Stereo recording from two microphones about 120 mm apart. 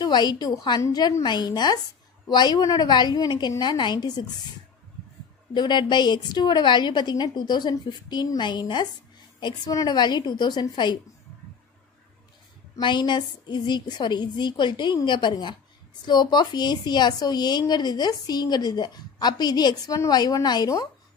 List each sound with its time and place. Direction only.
0.0 s a woman's voice: 35° left (ahead or behind)
5.5 s a woman's voice: 40° left (ahead or behind)
12.7 s a woman's voice: 40° left (ahead or behind)